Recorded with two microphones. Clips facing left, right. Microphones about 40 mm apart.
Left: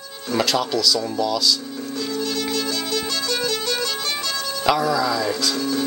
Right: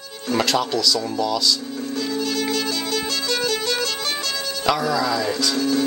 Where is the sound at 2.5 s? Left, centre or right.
Right.